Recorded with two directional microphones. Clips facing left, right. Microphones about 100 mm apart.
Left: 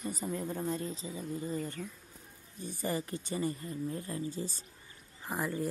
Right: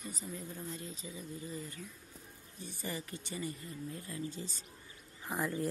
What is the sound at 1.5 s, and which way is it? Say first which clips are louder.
Speech: left 7 dB; 50° left (ahead or behind).